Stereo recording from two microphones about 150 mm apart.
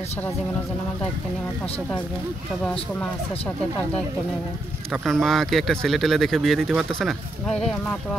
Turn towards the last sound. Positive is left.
turn(degrees=5)  # may be behind; listen again after turning